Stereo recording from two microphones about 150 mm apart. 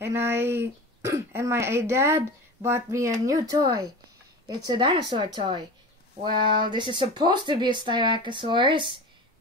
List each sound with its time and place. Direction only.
0.0 s speech: 15° right (ahead or behind); by 9.0 s 35° right (ahead or behind)